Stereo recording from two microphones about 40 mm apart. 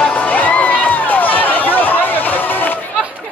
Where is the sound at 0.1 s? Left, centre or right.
Left.